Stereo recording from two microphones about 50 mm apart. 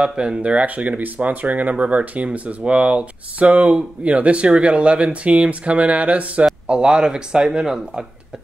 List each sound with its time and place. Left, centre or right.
0.0 s speech: centre